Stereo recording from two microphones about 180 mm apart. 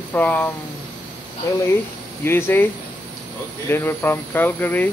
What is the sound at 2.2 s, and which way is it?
Speech, 10° left (ahead or behind).